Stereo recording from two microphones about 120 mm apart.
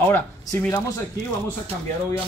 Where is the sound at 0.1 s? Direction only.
25° left (ahead or behind).